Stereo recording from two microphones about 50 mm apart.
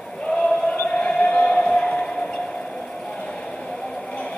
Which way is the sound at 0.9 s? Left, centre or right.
Centre.